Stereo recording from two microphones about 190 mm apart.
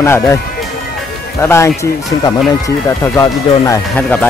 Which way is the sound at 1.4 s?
15° left (ahead or behind).